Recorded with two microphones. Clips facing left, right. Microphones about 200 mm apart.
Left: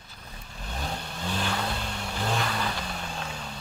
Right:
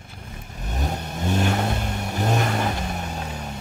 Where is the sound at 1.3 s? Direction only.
45° right (ahead or behind).